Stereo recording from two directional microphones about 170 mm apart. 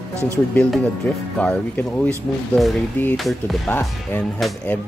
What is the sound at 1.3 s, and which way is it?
Speech, 10° left (ahead or behind).